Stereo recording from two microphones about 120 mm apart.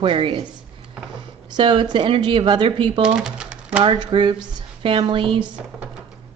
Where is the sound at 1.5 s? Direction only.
45° right (ahead or behind).